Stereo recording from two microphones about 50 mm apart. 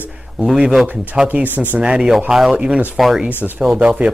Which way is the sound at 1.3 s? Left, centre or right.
Right.